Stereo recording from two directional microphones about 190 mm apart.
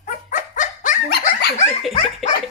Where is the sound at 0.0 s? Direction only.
40° left (ahead or behind).